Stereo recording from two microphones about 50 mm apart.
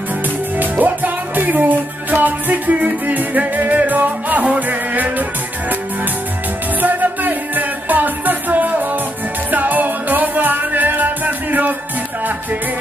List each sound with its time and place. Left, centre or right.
0.6 s music: right
6.8 s music: right